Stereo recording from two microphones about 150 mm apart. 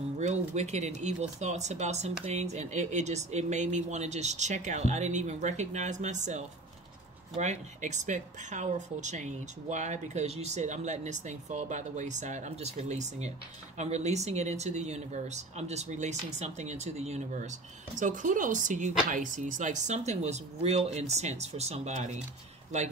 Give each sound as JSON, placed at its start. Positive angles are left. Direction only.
{"t": 0.2, "sound": "speech", "side_deg": -50}